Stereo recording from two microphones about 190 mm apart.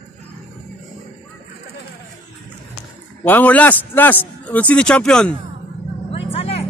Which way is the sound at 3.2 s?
10° left (ahead or behind).